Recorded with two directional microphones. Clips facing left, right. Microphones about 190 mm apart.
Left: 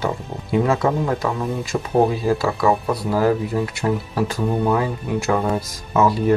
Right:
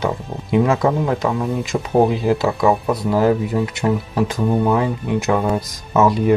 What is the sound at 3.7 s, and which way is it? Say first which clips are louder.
Speech: right 2 dB; 20° right (ahead or behind).